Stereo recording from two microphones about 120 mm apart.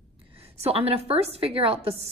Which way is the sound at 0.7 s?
55° right (ahead or behind).